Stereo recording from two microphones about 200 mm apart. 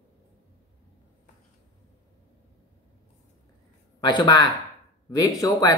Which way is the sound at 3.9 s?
20° left (ahead or behind).